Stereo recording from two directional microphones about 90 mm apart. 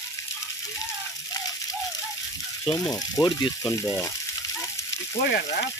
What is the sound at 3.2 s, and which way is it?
Speech, 45° left (ahead or behind).